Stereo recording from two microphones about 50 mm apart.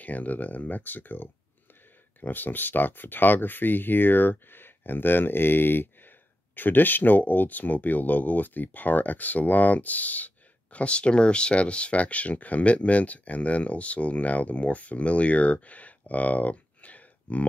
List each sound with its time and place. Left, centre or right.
0.0 s speech: left